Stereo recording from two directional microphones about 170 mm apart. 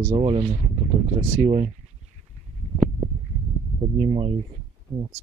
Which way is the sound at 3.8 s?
35° right (ahead or behind).